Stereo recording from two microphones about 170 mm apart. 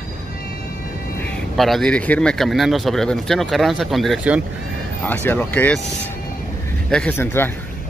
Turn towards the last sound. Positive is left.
turn(degrees=10)  # may be behind; listen again after turning